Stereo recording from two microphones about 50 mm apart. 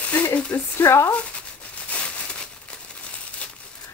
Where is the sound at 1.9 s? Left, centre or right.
Left.